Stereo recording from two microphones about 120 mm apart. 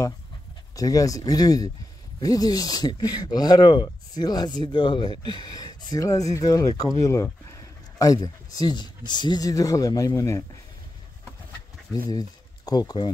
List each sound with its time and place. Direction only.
0.7 s speech: 30° left (ahead or behind)
11.9 s speech: 30° left (ahead or behind)